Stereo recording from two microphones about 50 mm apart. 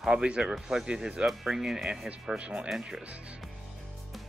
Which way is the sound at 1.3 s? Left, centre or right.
Centre.